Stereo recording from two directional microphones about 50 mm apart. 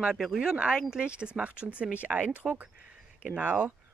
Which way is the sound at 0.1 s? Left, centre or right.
Centre.